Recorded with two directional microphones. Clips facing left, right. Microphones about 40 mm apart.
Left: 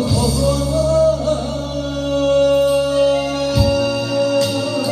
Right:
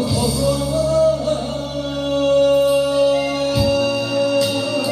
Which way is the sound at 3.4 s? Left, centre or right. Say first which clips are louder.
Left 1 dB; right.